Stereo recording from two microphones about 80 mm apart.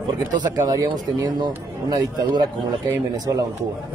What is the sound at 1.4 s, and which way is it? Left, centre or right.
Speech, right.